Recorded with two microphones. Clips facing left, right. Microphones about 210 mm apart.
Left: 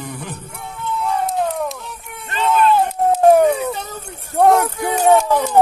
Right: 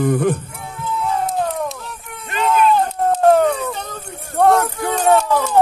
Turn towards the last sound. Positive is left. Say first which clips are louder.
# left 1 dB
turn(degrees=15)  # may be behind; listen again after turning